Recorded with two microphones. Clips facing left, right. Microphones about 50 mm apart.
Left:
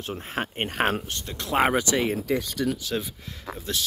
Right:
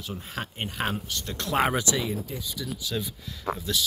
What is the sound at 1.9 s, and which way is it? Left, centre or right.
Speech, left.